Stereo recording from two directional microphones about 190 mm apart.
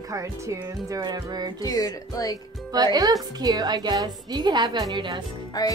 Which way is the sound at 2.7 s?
20° right (ahead or behind).